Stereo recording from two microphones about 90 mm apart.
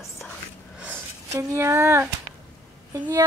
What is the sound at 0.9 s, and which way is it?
Speech, 30° right (ahead or behind).